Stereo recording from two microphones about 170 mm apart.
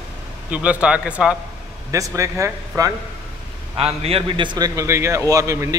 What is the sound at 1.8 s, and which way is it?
A man's voice, 20° right (ahead or behind).